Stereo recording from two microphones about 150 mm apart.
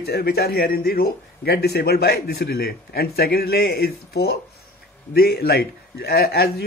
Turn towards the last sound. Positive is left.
turn(degrees=90)